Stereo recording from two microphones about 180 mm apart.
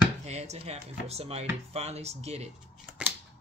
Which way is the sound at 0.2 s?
40° right (ahead or behind).